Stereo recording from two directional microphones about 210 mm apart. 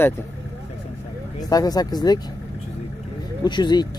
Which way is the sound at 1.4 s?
20° left (ahead or behind).